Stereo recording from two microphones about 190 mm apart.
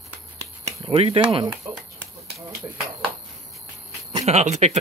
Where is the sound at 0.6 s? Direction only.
30° right (ahead or behind).